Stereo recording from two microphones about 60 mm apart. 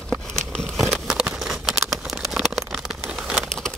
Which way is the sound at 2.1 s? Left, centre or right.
Centre.